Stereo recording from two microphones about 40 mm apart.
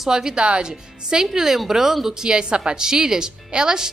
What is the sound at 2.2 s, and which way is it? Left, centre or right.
A woman's voice, right.